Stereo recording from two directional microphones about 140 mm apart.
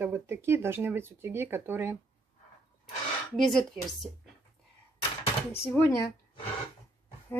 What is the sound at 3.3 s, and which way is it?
Speech, centre (ahead or behind).